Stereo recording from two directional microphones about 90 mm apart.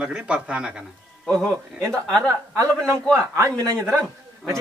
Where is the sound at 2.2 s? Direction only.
35° right (ahead or behind).